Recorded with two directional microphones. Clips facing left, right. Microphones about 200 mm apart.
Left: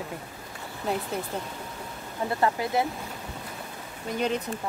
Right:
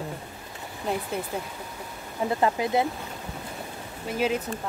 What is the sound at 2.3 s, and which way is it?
Speech, 20° right (ahead or behind).